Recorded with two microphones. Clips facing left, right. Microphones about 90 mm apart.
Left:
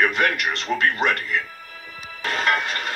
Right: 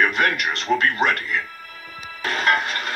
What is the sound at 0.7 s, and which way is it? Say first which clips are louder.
Speech: right 3 dB; 20° right (ahead or behind).